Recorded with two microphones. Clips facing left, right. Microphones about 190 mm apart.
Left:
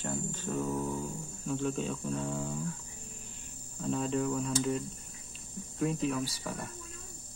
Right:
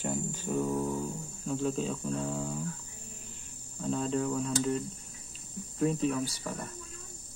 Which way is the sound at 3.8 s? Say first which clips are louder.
Right 1 dB; centre (ahead or behind).